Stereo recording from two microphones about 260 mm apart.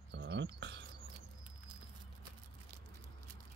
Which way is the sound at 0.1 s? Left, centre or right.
Right.